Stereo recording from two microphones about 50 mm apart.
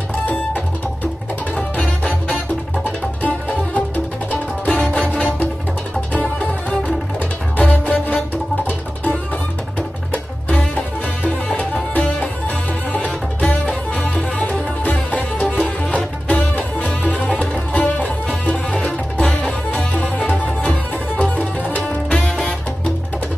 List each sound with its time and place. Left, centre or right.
1.8 s music: left
7.5 s music: left
10.5 s music: left
19.7 s music: left
22.1 s music: centre